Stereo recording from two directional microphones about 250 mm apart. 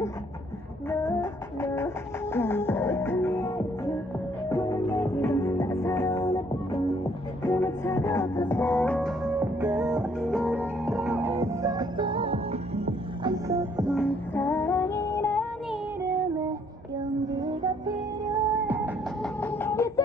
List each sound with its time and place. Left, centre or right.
0.8 s music: centre
6.7 s music: left
7.0 s music: centre
13.9 s music: centre
15.7 s music: centre
19.4 s music: centre